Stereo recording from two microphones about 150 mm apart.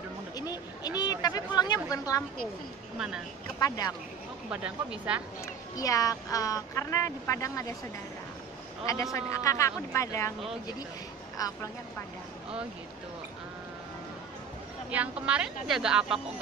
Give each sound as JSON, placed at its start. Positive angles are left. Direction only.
{"t": 0.4, "sound": "speech", "side_deg": 25}
{"t": 3.5, "sound": "speech", "side_deg": 25}
{"t": 4.5, "sound": "speech", "side_deg": -10}
{"t": 5.4, "sound": "speech", "side_deg": 20}
{"t": 8.8, "sound": "speech", "side_deg": 20}
{"t": 11.3, "sound": "speech", "side_deg": 25}
{"t": 14.9, "sound": "a woman's voice", "side_deg": -10}